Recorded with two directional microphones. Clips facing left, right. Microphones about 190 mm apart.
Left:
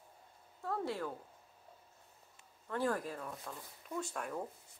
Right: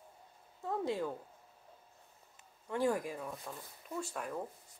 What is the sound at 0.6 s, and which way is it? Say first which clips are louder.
Speech: right 3 dB; 15° right (ahead or behind).